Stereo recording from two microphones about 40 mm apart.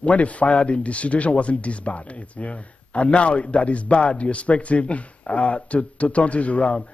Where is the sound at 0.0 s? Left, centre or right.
Left.